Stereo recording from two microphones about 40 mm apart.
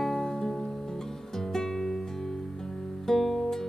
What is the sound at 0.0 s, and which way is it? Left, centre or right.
Music, centre.